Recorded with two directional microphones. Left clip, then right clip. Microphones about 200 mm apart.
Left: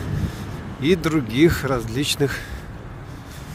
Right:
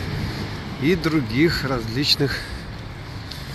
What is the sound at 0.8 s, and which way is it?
Speech, 35° left (ahead or behind).